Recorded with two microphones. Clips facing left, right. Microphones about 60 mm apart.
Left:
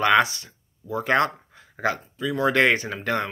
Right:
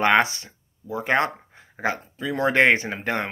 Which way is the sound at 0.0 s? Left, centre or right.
Right.